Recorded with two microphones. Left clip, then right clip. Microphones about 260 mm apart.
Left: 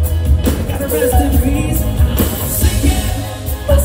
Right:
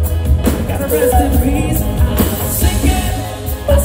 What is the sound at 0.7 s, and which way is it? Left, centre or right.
Music, right.